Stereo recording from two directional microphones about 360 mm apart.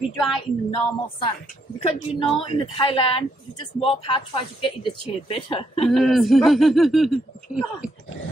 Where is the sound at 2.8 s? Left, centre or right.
Centre.